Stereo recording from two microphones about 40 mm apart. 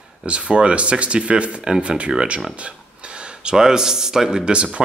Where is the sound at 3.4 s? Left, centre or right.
Centre.